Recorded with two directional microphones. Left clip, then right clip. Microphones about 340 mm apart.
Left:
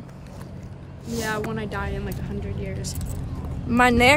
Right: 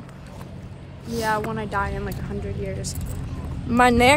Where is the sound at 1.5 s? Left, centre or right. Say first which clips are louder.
Right 4 dB; centre.